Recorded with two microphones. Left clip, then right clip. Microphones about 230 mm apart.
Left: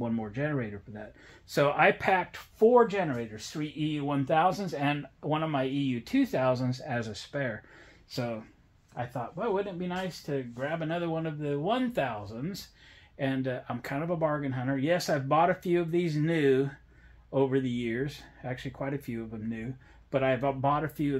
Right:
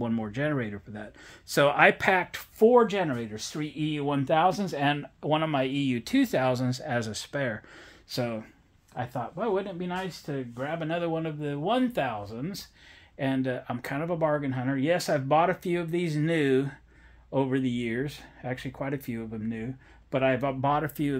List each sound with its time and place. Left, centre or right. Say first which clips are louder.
0.0 s speech: right 3 dB; right